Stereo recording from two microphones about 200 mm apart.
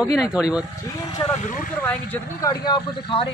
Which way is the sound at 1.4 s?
40° left (ahead or behind).